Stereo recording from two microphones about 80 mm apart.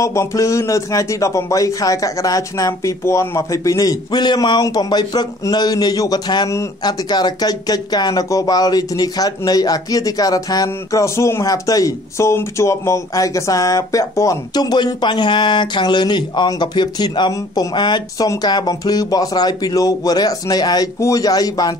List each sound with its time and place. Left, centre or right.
0.0 s speech: left
4.1 s speech: left
14.5 s speech: left